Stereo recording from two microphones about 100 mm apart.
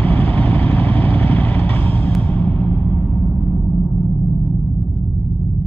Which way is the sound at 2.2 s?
15° left (ahead or behind).